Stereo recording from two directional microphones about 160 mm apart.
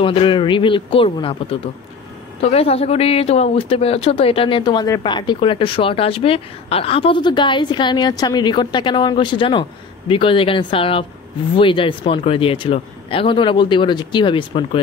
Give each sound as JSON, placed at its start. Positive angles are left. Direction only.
{"t": 0.0, "sound": "speech", "side_deg": 35}